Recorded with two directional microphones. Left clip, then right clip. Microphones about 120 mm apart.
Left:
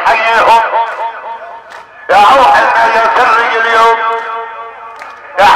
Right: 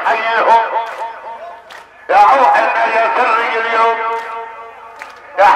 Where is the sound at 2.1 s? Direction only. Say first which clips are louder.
Left 4 dB; 40° left (ahead or behind).